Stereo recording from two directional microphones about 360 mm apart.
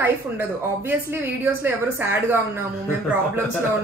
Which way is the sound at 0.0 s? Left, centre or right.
Centre.